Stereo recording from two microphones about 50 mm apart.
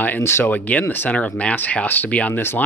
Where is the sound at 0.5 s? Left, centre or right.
Left.